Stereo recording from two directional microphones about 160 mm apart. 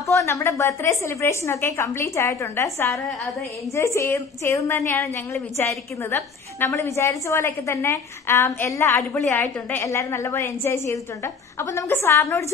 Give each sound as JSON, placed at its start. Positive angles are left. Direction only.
{"t": 0.0, "sound": "a woman's voice", "side_deg": 20}